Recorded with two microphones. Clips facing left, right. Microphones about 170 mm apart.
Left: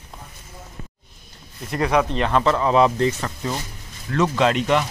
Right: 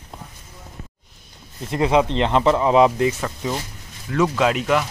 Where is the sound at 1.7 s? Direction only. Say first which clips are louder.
Right 2 dB; 20° right (ahead or behind).